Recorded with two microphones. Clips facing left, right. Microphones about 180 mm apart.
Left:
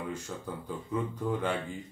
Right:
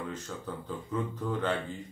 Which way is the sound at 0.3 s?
10° left (ahead or behind).